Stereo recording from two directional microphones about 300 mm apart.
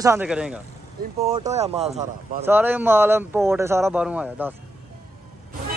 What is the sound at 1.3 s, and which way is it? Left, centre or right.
Speech, right.